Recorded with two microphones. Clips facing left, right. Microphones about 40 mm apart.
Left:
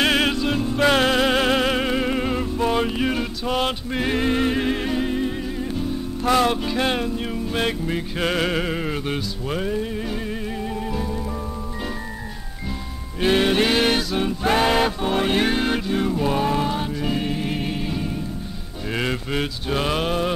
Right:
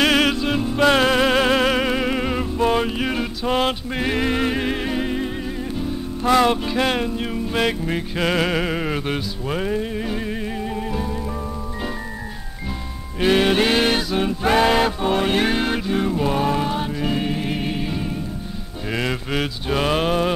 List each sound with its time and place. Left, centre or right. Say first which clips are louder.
0.0 s music: right 2 dB; right
0.5 s music: right 2 dB; centre
3.4 s music: right 3 dB; right
3.9 s mantra: even; centre
4.3 s music: even; centre
6.3 s music: right 3 dB; right
6.6 s music: right 1 dB; centre
7.5 s music: right 2 dB; centre
13.2 s music: right 1 dB; centre
19.4 s mantra: right 4 dB; centre
20.0 s music: right 3 dB; right